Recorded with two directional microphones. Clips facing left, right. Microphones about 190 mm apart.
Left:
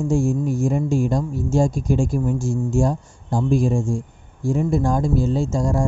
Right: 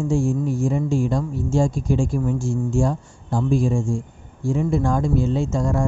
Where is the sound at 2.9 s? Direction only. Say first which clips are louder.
Left 1 dB; 15° left (ahead or behind).